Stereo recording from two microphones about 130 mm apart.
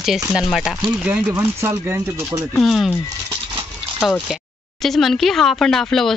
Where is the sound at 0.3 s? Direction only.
Centre (ahead or behind); by 2.0 s 20° right (ahead or behind).